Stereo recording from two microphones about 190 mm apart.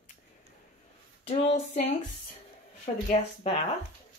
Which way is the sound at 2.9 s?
35° left (ahead or behind).